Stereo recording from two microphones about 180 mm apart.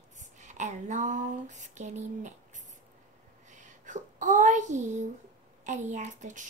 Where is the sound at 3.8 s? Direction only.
45° right (ahead or behind).